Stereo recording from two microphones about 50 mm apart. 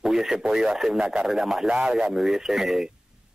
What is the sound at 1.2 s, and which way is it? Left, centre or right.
Speech, centre.